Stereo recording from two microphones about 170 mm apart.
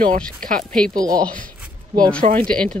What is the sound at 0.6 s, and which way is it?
Speech, 5° left (ahead or behind).